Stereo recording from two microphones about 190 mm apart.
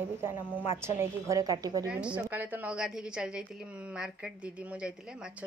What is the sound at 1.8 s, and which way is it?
A woman's voice, 5° right (ahead or behind).